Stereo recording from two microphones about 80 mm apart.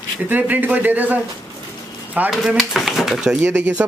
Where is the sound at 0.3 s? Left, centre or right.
Right.